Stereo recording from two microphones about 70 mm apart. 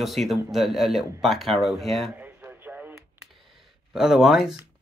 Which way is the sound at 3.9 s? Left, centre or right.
Centre.